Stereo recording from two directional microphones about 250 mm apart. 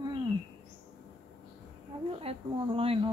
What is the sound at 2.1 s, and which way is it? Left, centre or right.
Speech, right.